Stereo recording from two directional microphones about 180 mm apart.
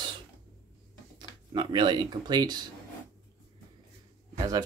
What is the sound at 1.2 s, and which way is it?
Speech, 25° right (ahead or behind).